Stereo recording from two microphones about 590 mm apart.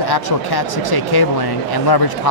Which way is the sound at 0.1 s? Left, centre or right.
Left.